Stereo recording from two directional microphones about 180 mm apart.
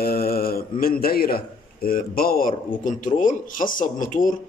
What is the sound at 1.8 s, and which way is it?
A man's voice, 55° left (ahead or behind).